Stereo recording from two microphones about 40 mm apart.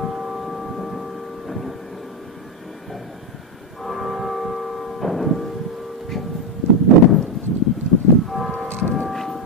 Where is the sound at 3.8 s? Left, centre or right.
Centre.